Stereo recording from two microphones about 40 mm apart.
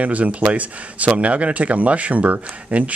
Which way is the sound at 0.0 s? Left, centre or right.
Right.